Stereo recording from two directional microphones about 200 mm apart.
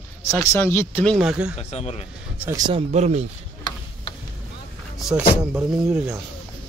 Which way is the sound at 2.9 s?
35° right (ahead or behind).